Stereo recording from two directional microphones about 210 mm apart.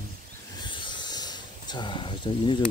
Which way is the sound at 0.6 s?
20° left (ahead or behind).